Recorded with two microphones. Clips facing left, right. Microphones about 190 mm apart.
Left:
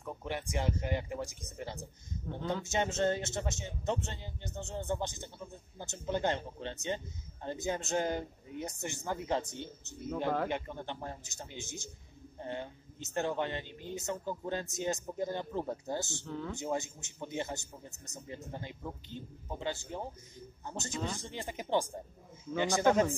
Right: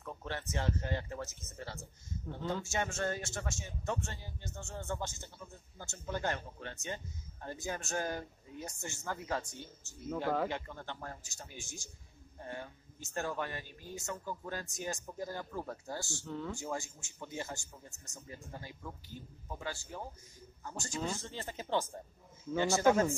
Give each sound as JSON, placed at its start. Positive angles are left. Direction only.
{"t": 0.0, "sound": "a man's voice", "side_deg": 15}
{"t": 16.3, "sound": "speech", "side_deg": 0}
{"t": 16.5, "sound": "a man's voice", "side_deg": 20}